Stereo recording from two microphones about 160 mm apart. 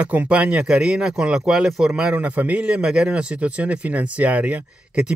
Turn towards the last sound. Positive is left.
turn(degrees=-5)  # may be behind; listen again after turning